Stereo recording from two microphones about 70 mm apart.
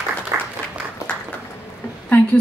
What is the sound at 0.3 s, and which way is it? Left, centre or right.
Applause, right.